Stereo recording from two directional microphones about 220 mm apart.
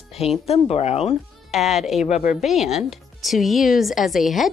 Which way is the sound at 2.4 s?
Centre (ahead or behind).